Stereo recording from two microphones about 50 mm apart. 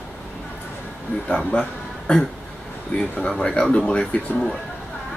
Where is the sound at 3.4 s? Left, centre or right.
Centre.